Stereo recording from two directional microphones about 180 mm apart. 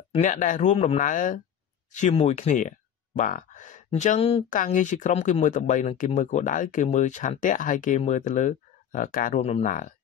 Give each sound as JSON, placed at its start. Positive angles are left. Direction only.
{"t": 0.1, "sound": "speech", "side_deg": 45}
{"t": 4.5, "sound": "speech", "side_deg": 45}